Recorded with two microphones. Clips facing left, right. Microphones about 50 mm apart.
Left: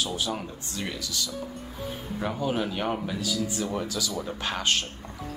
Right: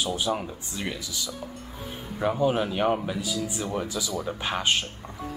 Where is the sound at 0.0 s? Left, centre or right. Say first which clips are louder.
Right 3 dB; centre.